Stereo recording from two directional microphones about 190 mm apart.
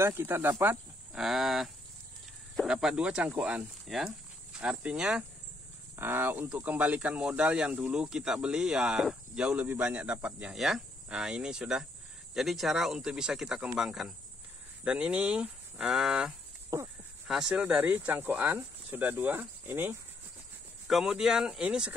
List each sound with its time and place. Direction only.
0.0 s speech: 10° right (ahead or behind)
16.7 s speech: 15° right (ahead or behind)
17.3 s speech: 5° right (ahead or behind)